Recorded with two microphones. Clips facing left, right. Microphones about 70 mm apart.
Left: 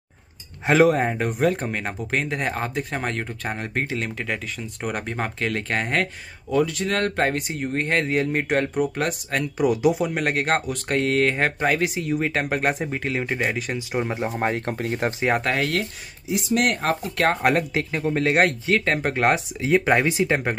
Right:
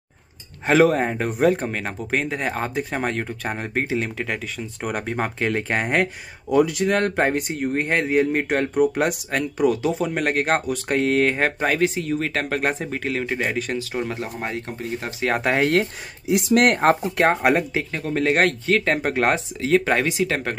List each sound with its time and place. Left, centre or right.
0.7 s speech: centre
9.4 s speech: centre
13.7 s speech: centre
14.7 s speech: left
16.3 s speech: right
16.6 s speech: right
17.2 s speech: centre
19.3 s speech: centre